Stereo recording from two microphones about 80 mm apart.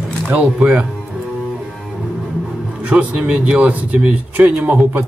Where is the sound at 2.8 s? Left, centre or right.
Centre.